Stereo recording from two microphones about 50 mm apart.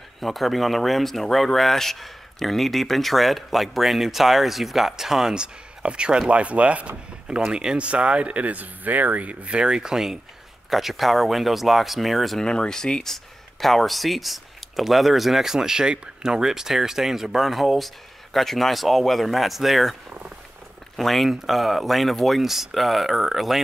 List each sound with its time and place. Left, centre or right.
0.2 s speech: centre
12.4 s speech: centre